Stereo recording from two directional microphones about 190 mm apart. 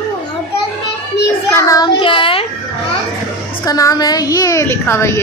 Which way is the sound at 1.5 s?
15° left (ahead or behind).